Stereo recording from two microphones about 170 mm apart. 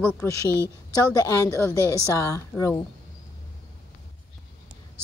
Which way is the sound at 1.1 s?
20° left (ahead or behind).